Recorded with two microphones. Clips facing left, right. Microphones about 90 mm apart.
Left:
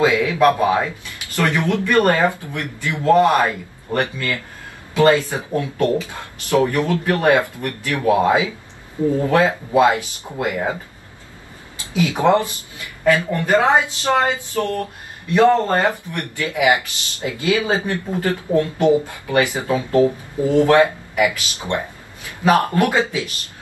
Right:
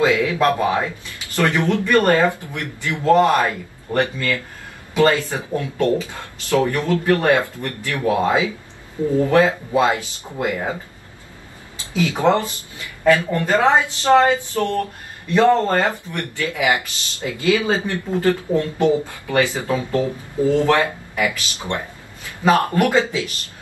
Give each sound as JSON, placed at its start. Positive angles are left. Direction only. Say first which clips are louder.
{"t": 0.0, "sound": "speech", "louder": "left 2 dB", "side_deg": 20}
{"t": 12.2, "sound": "a woman's voice", "louder": "left 2 dB", "side_deg": 20}